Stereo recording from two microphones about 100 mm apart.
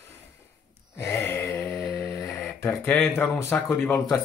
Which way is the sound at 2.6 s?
30° left (ahead or behind).